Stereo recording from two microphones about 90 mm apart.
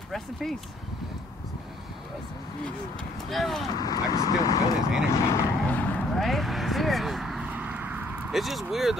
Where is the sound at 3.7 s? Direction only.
45° left (ahead or behind).